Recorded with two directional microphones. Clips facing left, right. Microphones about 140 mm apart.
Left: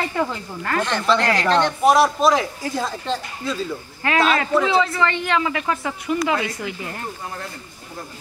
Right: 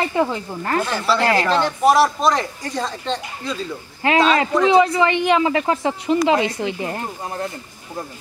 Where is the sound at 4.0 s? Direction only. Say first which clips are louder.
Right 3 dB; 20° right (ahead or behind).